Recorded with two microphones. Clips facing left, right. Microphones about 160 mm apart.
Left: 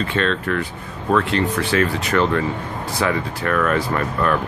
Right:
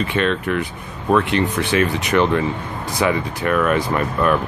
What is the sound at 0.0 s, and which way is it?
Speech, 15° right (ahead or behind).